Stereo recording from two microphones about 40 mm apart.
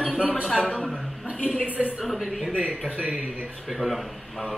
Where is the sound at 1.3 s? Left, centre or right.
Left.